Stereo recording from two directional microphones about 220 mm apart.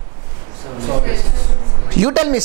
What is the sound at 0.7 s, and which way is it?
Speech, 30° right (ahead or behind).